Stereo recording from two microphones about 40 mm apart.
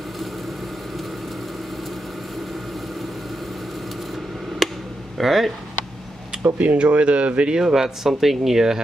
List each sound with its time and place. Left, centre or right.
4.6 s a sound: centre
5.1 s speech: centre
6.6 s speech: right
7.5 s speech: centre